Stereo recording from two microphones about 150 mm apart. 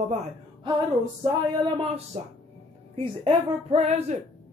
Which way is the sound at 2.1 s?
50° right (ahead or behind).